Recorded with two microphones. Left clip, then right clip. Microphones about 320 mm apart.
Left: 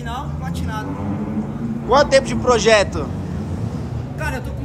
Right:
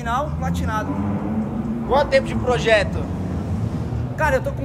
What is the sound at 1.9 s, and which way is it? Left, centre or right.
Speech, left.